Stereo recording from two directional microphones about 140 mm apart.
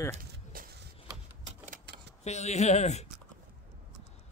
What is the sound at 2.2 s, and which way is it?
Speech, 50° left (ahead or behind).